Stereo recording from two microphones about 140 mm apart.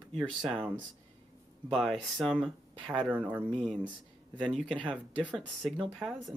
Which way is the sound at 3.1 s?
10° right (ahead or behind).